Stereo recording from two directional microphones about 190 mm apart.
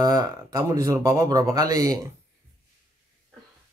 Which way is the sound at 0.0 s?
20° right (ahead or behind).